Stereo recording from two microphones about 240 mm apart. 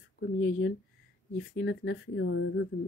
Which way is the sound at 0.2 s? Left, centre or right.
Left.